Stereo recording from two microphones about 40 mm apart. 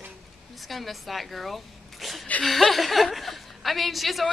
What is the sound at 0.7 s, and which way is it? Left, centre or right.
Speech, centre.